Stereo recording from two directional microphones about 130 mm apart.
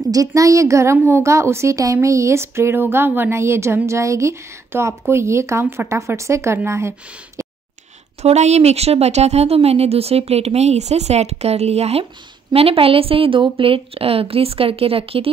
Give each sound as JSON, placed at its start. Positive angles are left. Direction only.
{"t": 0.1, "sound": "speech", "side_deg": -25}
{"t": 8.2, "sound": "a woman's voice", "side_deg": -60}